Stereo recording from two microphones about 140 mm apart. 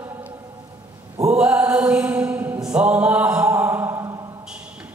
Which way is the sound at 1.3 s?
10° right (ahead or behind).